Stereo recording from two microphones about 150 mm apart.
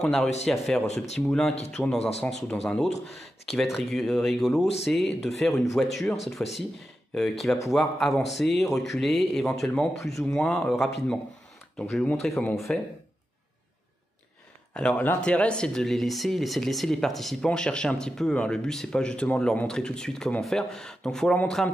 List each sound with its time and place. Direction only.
0.0 s speech: 5° left (ahead or behind)
0.8 s speech: 45° left (ahead or behind)
1.2 s speech: 5° left (ahead or behind)
2.0 s speech: 45° left (ahead or behind)
2.4 s speech: 10° left (ahead or behind)
14.7 s speech: 5° left (ahead or behind)